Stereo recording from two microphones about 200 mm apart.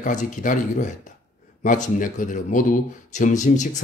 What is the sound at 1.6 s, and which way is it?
Speech, 40° left (ahead or behind).